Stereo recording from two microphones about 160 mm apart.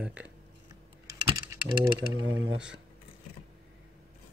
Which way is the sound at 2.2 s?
30° right (ahead or behind).